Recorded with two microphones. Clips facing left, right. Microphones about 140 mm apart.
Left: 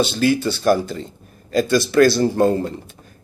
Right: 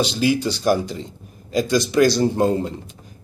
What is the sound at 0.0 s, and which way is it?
Speech, 15° right (ahead or behind).